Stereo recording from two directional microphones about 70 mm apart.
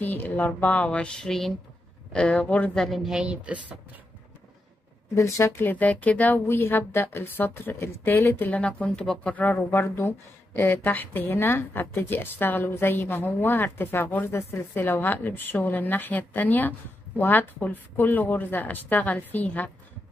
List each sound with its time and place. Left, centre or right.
0.0 s a woman's voice: left
2.7 s a woman's voice: centre
5.1 s speech: left
5.7 s a woman's voice: left
6.4 s a woman's voice: left
9.6 s a woman's voice: left